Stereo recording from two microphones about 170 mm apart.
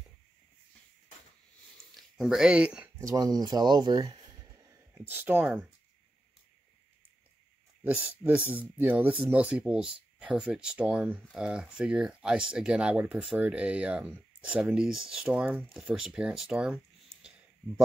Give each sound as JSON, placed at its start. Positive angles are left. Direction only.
{"t": 2.0, "sound": "speech", "side_deg": 0}
{"t": 3.0, "sound": "speech", "side_deg": -20}
{"t": 7.8, "sound": "speech", "side_deg": -10}